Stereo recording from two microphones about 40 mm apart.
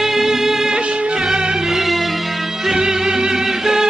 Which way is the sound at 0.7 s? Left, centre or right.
Right.